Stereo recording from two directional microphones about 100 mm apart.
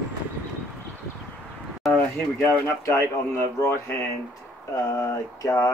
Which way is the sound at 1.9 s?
20° left (ahead or behind).